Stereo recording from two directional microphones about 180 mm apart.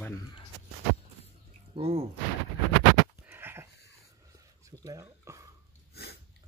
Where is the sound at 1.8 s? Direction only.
30° right (ahead or behind).